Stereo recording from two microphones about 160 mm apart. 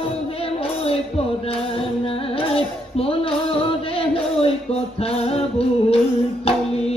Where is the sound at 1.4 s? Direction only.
35° left (ahead or behind).